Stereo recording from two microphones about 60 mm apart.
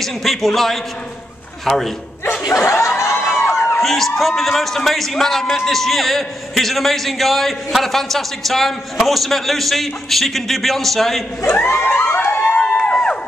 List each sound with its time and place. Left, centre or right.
0.0 s a man's voice: centre
2.4 s snicker: left
3.0 s a sound: left
3.8 s a man's voice: centre
11.6 s a sound: left
12.7 s music: centre